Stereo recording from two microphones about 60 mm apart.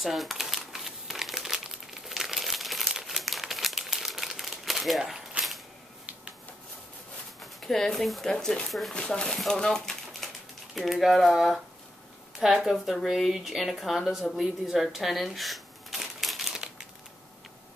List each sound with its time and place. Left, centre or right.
0.0 s crumpling: centre
7.6 s speech: centre
8.9 s speech: centre
14.3 s shuffling cards: centre